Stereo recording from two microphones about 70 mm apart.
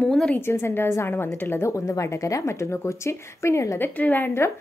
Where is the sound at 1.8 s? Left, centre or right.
Left.